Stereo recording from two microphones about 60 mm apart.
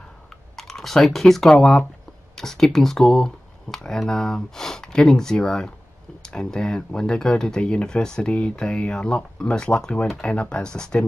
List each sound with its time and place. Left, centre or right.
0.6 s speech: centre